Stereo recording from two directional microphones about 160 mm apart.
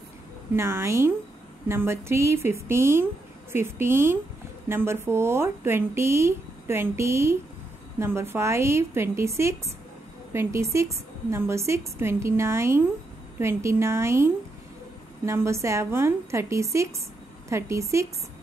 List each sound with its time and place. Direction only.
0.6 s speech: 15° right (ahead or behind)